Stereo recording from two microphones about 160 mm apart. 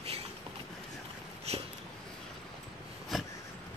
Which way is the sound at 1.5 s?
40° right (ahead or behind).